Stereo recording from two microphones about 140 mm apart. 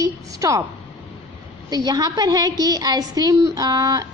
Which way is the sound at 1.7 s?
30° right (ahead or behind).